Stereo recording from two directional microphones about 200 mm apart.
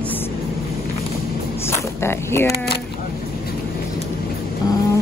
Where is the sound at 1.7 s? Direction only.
10° left (ahead or behind).